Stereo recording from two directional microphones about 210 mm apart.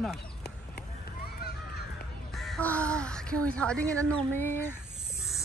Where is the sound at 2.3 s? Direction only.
5° left (ahead or behind).